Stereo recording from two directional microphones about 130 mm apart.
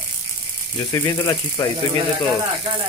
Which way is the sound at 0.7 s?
30° left (ahead or behind).